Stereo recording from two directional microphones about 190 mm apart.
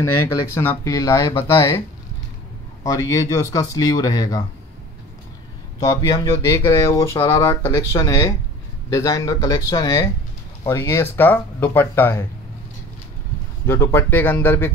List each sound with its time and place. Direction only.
0.6 s speech: 15° left (ahead or behind)
2.8 s speech: 15° left (ahead or behind)
5.8 s speech: 15° left (ahead or behind)
13.7 s speech: 10° left (ahead or behind)